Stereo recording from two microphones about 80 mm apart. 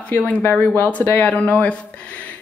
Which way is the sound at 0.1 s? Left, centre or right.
Centre.